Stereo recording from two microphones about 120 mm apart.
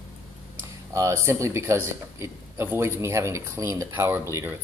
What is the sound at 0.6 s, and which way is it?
Speech, 25° right (ahead or behind).